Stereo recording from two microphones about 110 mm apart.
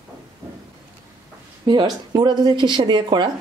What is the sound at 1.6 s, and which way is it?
Speech, 40° right (ahead or behind).